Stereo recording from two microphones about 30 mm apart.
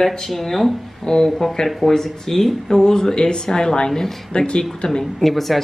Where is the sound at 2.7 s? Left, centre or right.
Left.